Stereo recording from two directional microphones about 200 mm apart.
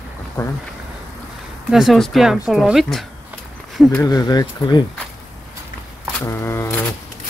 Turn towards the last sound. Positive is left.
turn(degrees=10)  # may be behind; listen again after turning